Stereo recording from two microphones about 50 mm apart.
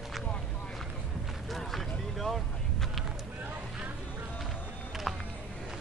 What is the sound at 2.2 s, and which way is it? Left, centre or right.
Boat, centre.